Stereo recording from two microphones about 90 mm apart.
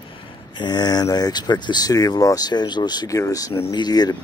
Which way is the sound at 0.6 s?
50° left (ahead or behind).